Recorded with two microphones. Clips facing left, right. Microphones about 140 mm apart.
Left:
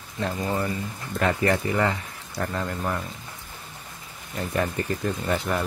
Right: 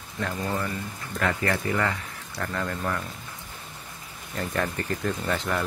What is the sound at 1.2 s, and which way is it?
Speech, 20° left (ahead or behind).